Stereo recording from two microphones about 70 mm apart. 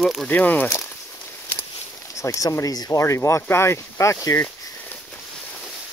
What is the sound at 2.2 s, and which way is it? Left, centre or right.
Speech, left.